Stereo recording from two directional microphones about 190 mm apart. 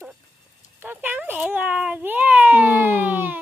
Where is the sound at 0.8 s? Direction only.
10° right (ahead or behind).